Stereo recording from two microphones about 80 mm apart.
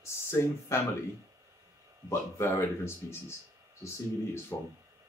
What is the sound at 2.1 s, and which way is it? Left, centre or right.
Speech, left.